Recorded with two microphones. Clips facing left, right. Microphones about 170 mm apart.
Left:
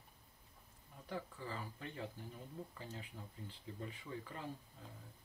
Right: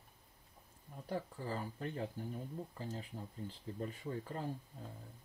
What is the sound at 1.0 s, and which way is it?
Speech, 40° right (ahead or behind).